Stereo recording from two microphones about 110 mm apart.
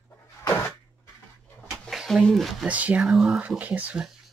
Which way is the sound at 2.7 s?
10° right (ahead or behind).